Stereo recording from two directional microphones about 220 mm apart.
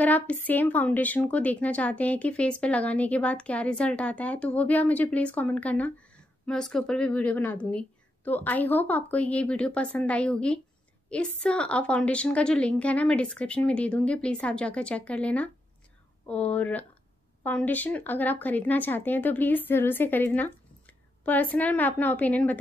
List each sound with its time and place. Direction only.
0.0 s a woman's voice: 5° left (ahead or behind)